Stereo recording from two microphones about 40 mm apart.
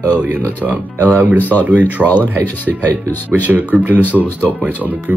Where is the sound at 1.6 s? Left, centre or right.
Right.